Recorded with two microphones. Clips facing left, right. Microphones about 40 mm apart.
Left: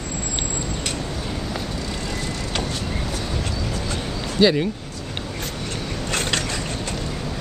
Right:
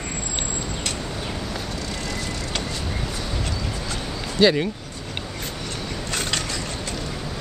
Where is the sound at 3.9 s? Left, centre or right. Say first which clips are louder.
Left 2 dB; centre.